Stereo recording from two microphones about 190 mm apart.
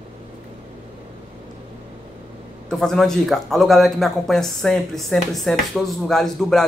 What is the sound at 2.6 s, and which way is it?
Speech, centre (ahead or behind).